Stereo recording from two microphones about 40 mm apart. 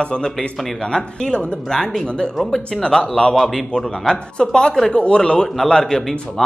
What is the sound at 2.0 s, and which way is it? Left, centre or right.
Speech, left.